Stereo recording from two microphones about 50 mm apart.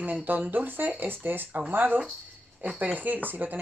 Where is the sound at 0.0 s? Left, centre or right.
Right.